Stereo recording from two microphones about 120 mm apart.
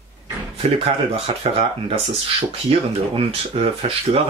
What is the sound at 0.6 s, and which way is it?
Speech, 55° right (ahead or behind).